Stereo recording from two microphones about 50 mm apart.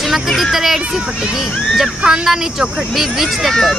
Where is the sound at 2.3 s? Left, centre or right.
Centre.